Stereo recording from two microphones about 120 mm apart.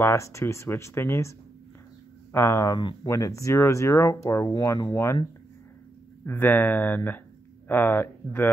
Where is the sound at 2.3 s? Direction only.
20° left (ahead or behind).